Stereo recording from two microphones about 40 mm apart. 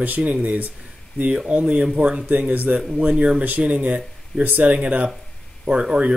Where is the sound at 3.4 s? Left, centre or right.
Right.